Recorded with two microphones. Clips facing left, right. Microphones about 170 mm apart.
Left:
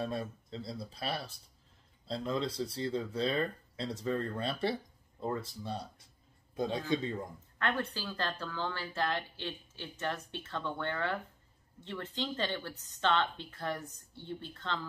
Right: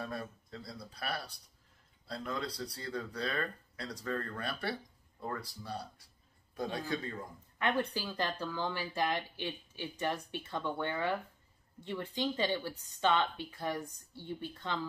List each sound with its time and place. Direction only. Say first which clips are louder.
0.0 s a man's voice: left 4 dB; 25° left (ahead or behind)
7.5 s speech: right 2 dB; 15° right (ahead or behind)